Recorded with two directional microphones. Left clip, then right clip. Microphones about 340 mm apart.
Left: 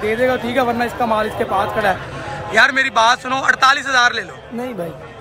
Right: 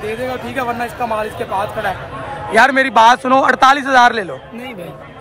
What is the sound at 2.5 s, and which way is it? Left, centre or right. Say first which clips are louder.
Speech: right 2 dB; centre.